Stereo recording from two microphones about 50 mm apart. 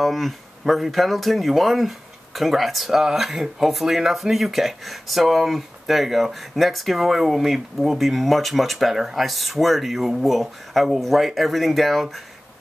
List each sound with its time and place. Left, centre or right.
0.0 s speech: centre